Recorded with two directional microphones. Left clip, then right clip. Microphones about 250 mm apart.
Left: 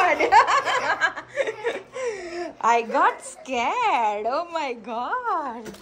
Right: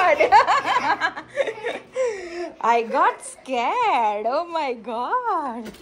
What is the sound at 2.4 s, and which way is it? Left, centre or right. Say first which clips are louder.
A child's voice: right 1 dB; centre.